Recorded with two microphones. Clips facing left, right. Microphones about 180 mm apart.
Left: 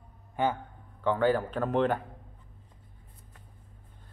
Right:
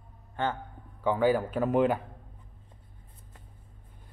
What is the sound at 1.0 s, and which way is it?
Speech, 10° right (ahead or behind).